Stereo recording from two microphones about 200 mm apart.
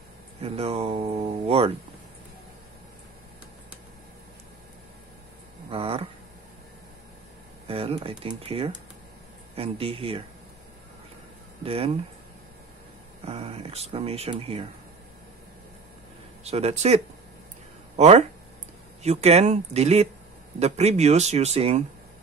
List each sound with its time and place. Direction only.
0.4 s speech: 30° right (ahead or behind)
5.7 s a sound: 30° right (ahead or behind)
7.6 s speech: 30° right (ahead or behind)
11.6 s speech: 30° right (ahead or behind)
13.2 s speech: 30° right (ahead or behind)
16.4 s speech: 30° right (ahead or behind)